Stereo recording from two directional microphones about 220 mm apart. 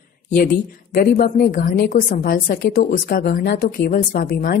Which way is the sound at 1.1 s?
40° left (ahead or behind).